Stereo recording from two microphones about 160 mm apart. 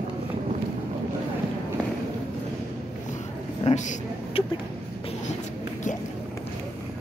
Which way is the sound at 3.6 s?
50° left (ahead or behind).